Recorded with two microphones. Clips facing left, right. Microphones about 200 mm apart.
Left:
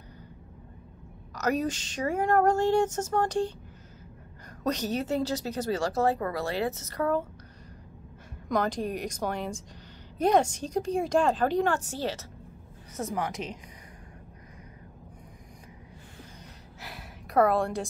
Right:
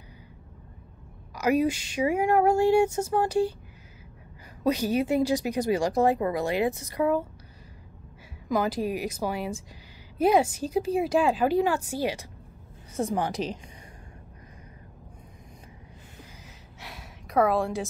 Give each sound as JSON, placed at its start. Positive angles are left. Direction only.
{"t": 1.3, "sound": "speech", "side_deg": -10}
{"t": 4.6, "sound": "speech", "side_deg": -10}
{"t": 8.5, "sound": "a woman's voice", "side_deg": -5}
{"t": 12.9, "sound": "speech", "side_deg": -30}
{"t": 16.8, "sound": "a sound", "side_deg": 0}